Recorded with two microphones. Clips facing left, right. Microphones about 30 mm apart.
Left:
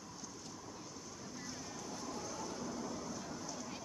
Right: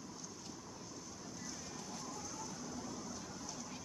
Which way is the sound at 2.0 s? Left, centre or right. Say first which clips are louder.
Left 3 dB; left.